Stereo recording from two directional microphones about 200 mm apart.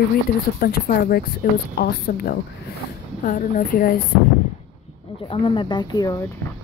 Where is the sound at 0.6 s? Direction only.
50° left (ahead or behind).